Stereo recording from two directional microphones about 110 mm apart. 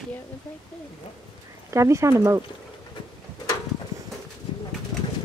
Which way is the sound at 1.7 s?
25° right (ahead or behind).